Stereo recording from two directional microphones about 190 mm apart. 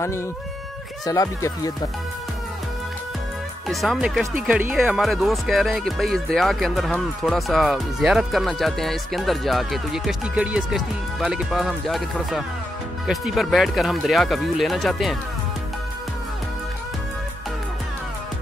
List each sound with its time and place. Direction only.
1.0 s speech: 20° left (ahead or behind)
3.6 s speech: centre (ahead or behind)